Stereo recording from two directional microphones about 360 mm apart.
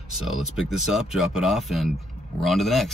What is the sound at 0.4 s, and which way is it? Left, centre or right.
Speech, centre.